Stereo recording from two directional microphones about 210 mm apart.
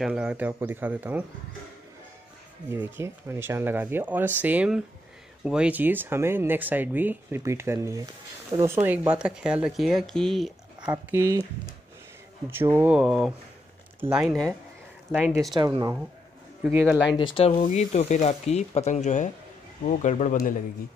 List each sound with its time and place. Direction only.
0.0 s speech: 5° right (ahead or behind)
2.7 s speech: 10° right (ahead or behind)
12.4 s speech: 10° right (ahead or behind)
15.5 s speech: 20° right (ahead or behind)
16.7 s speech: 10° right (ahead or behind)
17.2 s speech: 25° left (ahead or behind)